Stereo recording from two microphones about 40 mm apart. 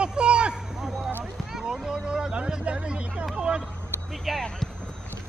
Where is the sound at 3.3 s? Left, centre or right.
Right.